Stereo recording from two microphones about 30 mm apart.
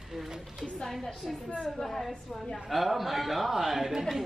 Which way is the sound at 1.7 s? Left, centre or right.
Centre.